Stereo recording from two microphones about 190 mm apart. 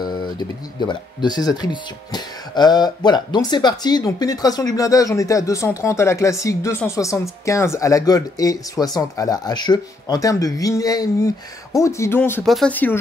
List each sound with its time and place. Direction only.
0.0 s speech: 20° left (ahead or behind)